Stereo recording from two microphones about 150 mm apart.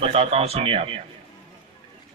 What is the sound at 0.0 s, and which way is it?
Speech, 40° right (ahead or behind).